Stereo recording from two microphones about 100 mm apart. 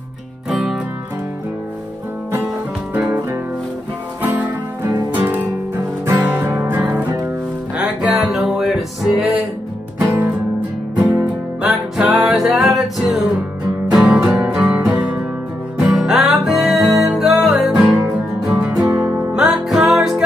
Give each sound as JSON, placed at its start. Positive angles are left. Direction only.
{"t": 0.5, "sound": "music", "side_deg": -5}
{"t": 5.1, "sound": "music", "side_deg": -15}
{"t": 7.7, "sound": "music", "side_deg": -5}
{"t": 9.9, "sound": "music", "side_deg": -20}
{"t": 11.6, "sound": "music", "side_deg": -5}